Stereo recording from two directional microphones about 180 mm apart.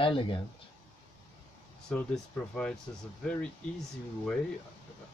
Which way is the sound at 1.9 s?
5° left (ahead or behind).